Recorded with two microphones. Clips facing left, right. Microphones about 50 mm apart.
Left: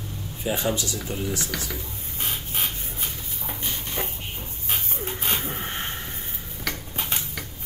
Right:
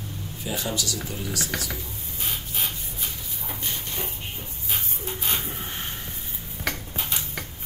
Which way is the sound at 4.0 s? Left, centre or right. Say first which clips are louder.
Left 2 dB; left.